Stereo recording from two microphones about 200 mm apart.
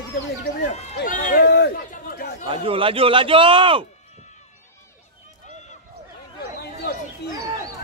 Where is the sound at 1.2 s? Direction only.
50° left (ahead or behind).